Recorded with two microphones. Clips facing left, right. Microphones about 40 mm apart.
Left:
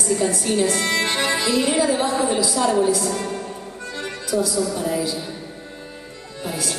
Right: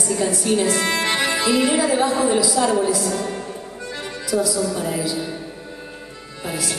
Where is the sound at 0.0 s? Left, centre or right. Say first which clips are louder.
Even; right.